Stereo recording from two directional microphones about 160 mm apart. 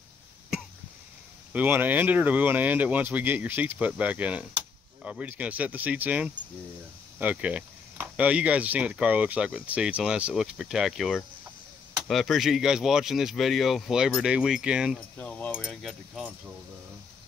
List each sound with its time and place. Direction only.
1.5 s speech: 10° right (ahead or behind)
15.1 s speech: 10° left (ahead or behind)
15.5 s speech: 5° right (ahead or behind)